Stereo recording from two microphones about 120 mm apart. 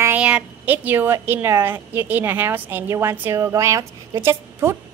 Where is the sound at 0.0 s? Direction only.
10° right (ahead or behind).